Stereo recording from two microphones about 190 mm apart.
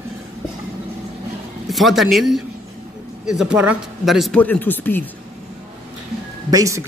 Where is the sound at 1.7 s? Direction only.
Centre (ahead or behind).